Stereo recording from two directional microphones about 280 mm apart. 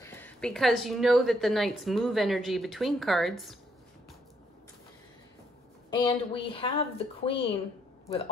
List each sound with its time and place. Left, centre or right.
0.0 s a woman's voice: centre
5.9 s a woman's voice: centre